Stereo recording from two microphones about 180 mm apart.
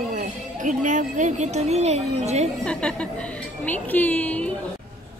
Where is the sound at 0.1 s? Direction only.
45° right (ahead or behind).